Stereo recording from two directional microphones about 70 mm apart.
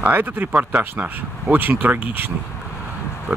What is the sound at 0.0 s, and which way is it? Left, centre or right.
Speech, right.